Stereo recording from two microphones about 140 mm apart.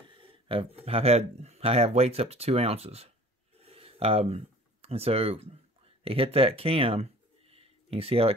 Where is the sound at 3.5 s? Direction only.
45° right (ahead or behind).